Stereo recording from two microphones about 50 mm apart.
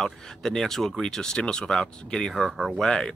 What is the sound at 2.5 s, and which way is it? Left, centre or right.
Speech, centre.